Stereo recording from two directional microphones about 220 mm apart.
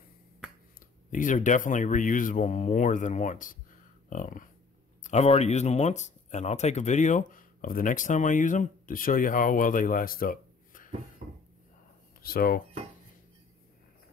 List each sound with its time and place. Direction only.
1.1 s speech: 35° left (ahead or behind)
11.2 s a sound: 35° right (ahead or behind)
12.2 s speech: 40° left (ahead or behind)